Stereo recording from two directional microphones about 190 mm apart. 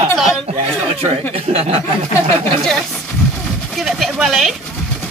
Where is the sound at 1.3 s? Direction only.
30° right (ahead or behind).